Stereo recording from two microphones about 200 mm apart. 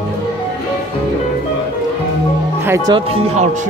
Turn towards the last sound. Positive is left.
turn(degrees=-20)  # may be behind; listen again after turning